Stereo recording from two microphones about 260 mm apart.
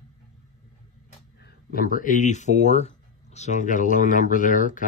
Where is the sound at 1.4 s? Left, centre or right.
Left.